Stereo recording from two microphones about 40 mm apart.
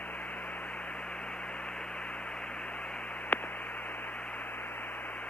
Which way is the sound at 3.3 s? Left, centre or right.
Left.